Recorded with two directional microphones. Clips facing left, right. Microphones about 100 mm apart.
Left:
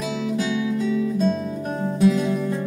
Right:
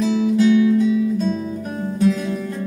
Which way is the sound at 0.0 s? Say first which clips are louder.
Right 8 dB; 15° left (ahead or behind).